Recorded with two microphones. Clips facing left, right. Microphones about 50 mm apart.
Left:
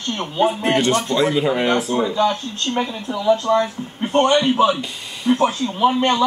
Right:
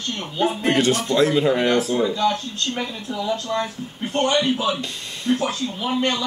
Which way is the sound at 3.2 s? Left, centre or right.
Left.